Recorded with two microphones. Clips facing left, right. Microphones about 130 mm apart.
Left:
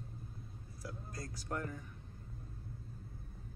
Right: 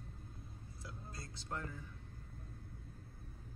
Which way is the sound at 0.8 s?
25° right (ahead or behind).